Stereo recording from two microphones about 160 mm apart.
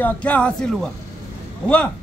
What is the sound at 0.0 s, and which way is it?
Speech, 10° left (ahead or behind).